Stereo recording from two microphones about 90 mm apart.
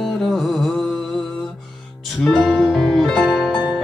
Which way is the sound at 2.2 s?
5° left (ahead or behind).